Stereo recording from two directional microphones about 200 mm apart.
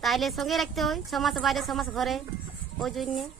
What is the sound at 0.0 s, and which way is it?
A woman's voice, centre (ahead or behind).